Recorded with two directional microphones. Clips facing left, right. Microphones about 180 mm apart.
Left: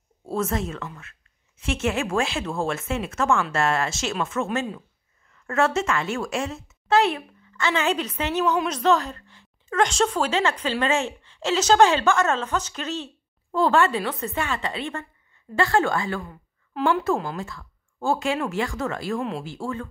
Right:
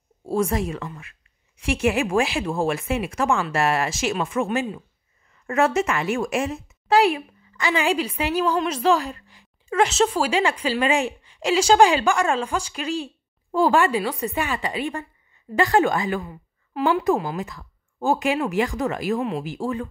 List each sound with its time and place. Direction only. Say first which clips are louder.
0.2 s a woman's voice: right 3 dB; 10° right (ahead or behind)
16.3 s a woman's voice: right 4 dB; 5° right (ahead or behind)
19.1 s speech: right 3 dB; 5° right (ahead or behind)
19.4 s speech: right 4 dB; 15° right (ahead or behind)